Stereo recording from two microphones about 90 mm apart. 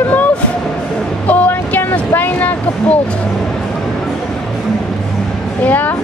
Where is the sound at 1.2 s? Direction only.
20° left (ahead or behind).